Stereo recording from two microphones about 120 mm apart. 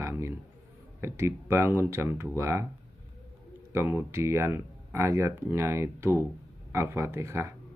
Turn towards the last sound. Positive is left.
turn(degrees=-25)  # may be behind; listen again after turning